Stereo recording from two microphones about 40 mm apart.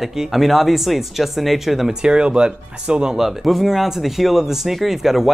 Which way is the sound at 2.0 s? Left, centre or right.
Right.